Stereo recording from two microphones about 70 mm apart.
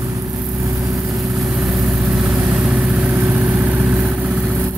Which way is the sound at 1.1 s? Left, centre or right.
Centre.